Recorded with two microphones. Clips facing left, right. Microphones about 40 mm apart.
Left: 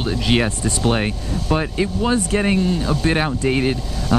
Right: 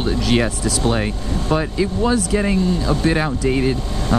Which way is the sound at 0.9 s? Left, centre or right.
Left.